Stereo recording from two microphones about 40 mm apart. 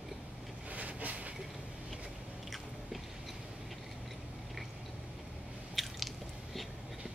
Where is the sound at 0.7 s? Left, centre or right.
Right.